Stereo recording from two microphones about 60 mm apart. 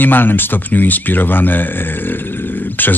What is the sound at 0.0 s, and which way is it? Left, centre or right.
Speech, left.